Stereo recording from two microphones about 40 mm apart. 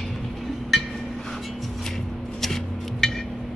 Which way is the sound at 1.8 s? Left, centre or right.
Centre.